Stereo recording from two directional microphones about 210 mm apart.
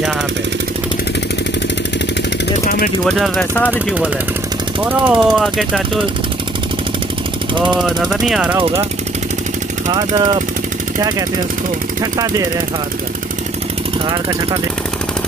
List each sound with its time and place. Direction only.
2.6 s jackhammer: 40° left (ahead or behind)
3.1 s speech: centre (ahead or behind)
3.7 s speech: 5° right (ahead or behind)
7.8 s speech: 5° right (ahead or behind)
9.9 s speech: 20° right (ahead or behind)